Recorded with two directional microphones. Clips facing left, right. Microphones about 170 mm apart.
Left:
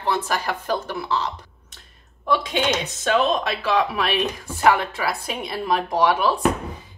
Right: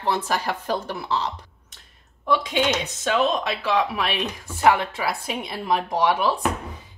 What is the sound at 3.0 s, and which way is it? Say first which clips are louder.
Speech: left 2 dB; 15° right (ahead or behind).